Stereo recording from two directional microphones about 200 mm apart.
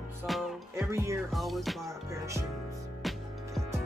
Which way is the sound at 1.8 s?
15° right (ahead or behind).